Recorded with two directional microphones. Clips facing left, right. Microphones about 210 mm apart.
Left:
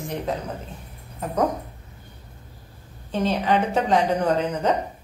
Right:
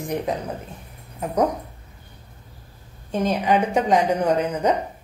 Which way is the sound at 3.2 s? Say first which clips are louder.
Right 1 dB; 10° right (ahead or behind).